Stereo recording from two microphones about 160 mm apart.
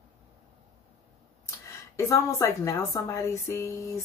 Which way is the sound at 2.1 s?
20° left (ahead or behind).